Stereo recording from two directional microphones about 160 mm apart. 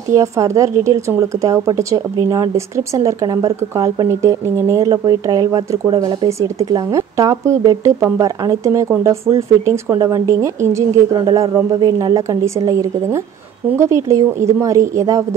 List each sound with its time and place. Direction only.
0.1 s speech: 20° right (ahead or behind)